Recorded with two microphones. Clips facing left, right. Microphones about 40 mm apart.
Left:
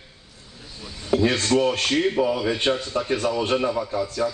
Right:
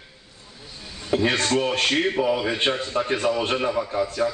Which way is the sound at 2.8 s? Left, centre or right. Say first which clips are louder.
Even; right.